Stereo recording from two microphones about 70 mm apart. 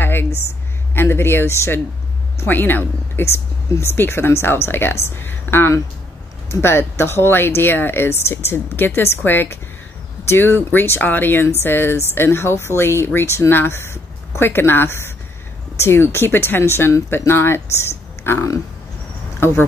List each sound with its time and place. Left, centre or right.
0.0 s a sound: left
0.9 s speech: left
2.4 s speech: left
3.2 s speech: left